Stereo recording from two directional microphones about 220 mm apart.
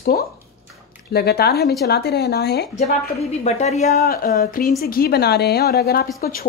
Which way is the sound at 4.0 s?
45° left (ahead or behind).